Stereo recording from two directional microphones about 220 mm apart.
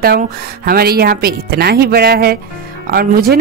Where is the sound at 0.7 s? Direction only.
45° right (ahead or behind).